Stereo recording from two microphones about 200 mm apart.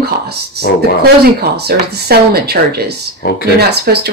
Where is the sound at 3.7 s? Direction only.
55° right (ahead or behind).